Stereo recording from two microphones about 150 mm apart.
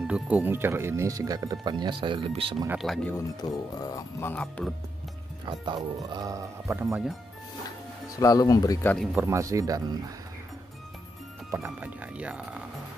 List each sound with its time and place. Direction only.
0.0 s speech: 10° right (ahead or behind); by 2.5 s 35° right (ahead or behind)
2.8 s speech: centre (ahead or behind)
3.3 s speech: 25° left (ahead or behind); by 4.7 s 5° left (ahead or behind)
5.4 s speech: 30° right (ahead or behind)
8.2 s speech: 25° left (ahead or behind)
8.8 s speech: centre (ahead or behind)
9.2 s speech: 20° right (ahead or behind)
11.5 s speech: 20° right (ahead or behind)